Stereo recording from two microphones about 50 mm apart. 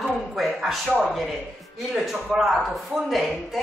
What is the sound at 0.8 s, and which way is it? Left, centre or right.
Speech, right.